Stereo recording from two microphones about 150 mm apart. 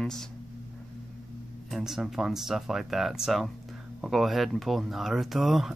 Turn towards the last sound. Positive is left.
turn(degrees=0)  # may be behind; listen again after turning